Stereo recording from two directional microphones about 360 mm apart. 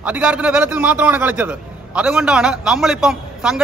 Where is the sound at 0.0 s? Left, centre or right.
Centre.